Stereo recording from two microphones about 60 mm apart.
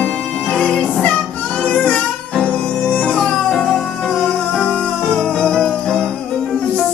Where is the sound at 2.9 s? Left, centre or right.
Left.